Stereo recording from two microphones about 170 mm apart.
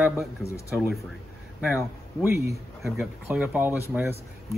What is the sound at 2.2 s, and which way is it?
Speech, 15° right (ahead or behind).